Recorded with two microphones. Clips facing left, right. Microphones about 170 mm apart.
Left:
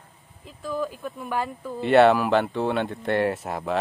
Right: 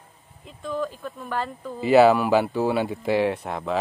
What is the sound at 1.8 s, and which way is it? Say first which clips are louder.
Speech: right 1 dB; centre (ahead or behind).